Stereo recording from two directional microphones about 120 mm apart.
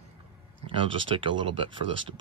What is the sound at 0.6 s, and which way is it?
Speech, 45° right (ahead or behind).